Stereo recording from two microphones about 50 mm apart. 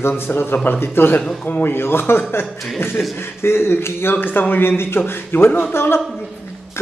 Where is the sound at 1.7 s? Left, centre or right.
Left.